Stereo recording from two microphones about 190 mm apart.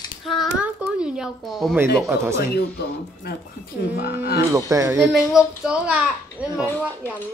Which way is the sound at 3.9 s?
55° left (ahead or behind).